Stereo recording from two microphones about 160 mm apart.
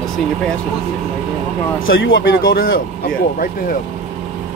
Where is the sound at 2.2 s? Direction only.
70° left (ahead or behind).